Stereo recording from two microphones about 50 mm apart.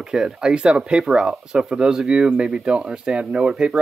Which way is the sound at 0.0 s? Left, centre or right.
Centre.